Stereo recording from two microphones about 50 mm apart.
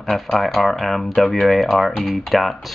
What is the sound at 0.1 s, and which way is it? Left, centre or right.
Speech, centre.